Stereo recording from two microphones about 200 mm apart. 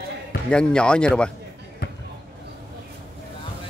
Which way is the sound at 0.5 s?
5° left (ahead or behind).